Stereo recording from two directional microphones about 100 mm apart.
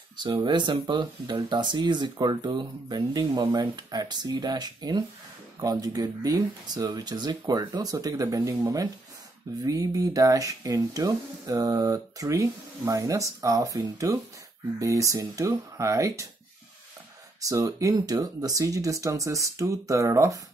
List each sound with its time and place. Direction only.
0.4 s speech: 50° right (ahead or behind); by 16.3 s 30° right (ahead or behind)
17.4 s speech: 35° right (ahead or behind)